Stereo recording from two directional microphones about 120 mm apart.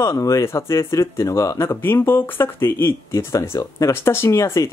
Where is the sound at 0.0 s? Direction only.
25° left (ahead or behind).